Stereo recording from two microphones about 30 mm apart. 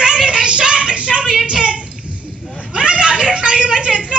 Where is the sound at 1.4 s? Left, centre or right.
Right.